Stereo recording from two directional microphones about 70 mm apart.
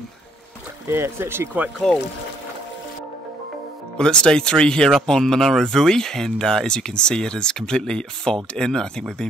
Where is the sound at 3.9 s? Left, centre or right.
Centre.